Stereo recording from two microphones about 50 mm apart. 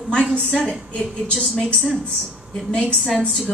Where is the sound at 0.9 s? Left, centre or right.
Left.